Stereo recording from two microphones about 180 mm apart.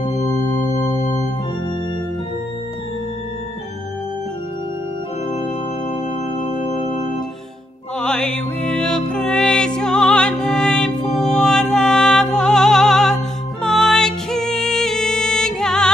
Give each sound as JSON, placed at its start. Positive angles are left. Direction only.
{"t": 0.3, "sound": "music", "side_deg": 15}
{"t": 6.3, "sound": "organ", "side_deg": 35}
{"t": 8.0, "sound": "music", "side_deg": 5}